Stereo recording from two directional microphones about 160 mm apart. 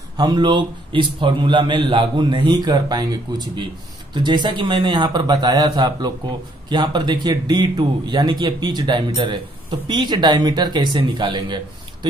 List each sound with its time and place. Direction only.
0.2 s speech: 25° right (ahead or behind)